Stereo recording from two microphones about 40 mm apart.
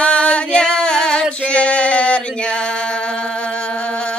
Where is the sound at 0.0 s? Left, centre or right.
Left.